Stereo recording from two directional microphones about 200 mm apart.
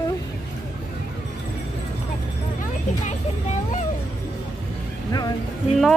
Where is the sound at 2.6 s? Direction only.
35° left (ahead or behind).